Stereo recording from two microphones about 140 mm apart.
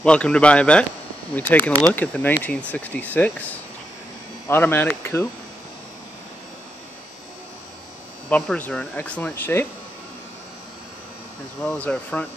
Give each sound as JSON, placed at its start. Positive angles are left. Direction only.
{"t": 0.0, "sound": "speech", "side_deg": 5}
{"t": 8.3, "sound": "speech", "side_deg": 10}
{"t": 11.6, "sound": "speech", "side_deg": 5}